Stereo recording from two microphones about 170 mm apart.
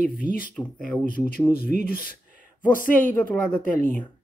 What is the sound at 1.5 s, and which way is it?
Speech, 60° left (ahead or behind).